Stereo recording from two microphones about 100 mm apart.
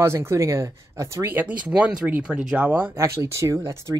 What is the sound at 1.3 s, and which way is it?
Speech, 15° right (ahead or behind).